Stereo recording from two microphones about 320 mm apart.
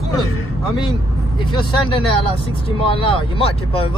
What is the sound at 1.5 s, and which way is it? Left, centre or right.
Speech, centre.